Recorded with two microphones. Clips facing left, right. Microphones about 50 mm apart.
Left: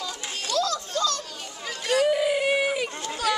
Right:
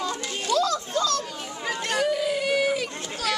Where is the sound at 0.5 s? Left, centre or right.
Centre.